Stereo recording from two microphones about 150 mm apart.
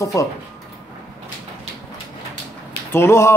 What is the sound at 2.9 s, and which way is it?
Speech, 15° left (ahead or behind).